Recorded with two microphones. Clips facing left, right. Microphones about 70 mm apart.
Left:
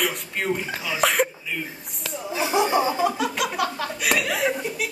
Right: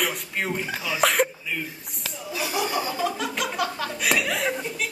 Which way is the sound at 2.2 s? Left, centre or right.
Left.